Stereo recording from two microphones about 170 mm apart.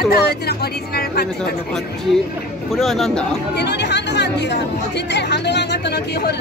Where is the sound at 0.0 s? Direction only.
65° left (ahead or behind).